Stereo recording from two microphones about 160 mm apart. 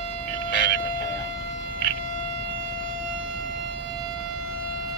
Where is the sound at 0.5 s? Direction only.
90° left.